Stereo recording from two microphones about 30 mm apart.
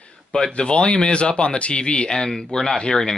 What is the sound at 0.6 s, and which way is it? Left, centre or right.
Speech, left.